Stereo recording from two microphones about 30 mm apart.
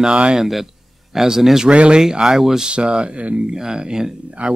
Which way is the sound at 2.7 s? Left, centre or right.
Right.